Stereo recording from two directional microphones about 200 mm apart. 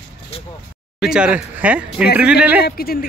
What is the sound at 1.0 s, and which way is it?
Speech, 5° right (ahead or behind).